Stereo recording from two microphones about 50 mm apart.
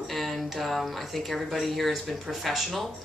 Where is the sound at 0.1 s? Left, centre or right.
Centre.